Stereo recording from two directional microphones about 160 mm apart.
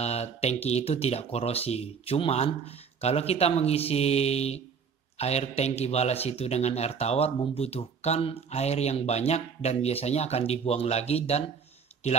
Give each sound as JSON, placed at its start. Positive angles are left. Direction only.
{"t": 0.0, "sound": "a man's voice", "side_deg": 40}